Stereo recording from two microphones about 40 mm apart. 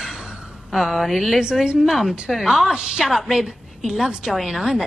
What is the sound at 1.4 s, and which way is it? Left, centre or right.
Speech, right.